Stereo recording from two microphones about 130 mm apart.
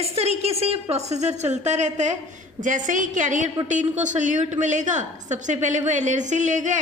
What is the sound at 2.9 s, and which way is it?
A woman's voice, 75° right (ahead or behind).